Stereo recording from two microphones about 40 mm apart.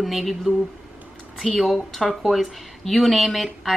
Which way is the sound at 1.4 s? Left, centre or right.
Centre.